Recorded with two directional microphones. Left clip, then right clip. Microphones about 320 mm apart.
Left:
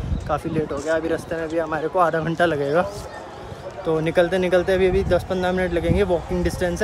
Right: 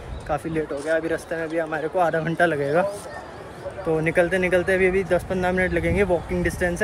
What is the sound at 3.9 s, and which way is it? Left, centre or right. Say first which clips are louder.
Speech: left 1 dB; centre.